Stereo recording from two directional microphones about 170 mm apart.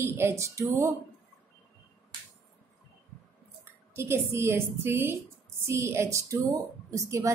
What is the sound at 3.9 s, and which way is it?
A woman's voice, 15° right (ahead or behind).